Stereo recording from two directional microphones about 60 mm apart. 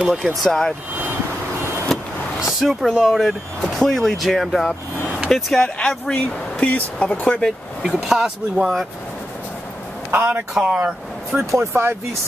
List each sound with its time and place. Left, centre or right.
0.0 s speech: centre
0.4 s speech: centre
1.9 s vehicle: centre
2.4 s speech: centre
6.2 s speech: left
7.2 s speech: centre
7.9 s speech: centre
10.1 s speech: right
10.5 s speech: centre
11.5 s speech: right